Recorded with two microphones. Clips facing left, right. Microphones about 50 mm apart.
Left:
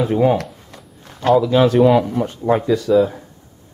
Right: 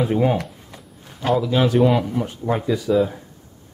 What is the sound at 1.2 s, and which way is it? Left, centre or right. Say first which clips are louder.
Speech: left 5 dB; left.